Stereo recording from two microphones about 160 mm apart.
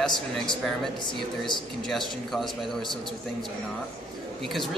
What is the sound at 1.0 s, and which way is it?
Speech, 30° left (ahead or behind).